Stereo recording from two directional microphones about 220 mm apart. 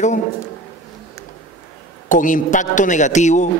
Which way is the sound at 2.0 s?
35° left (ahead or behind).